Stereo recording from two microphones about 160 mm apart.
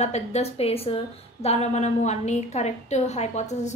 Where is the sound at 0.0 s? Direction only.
45° left (ahead or behind).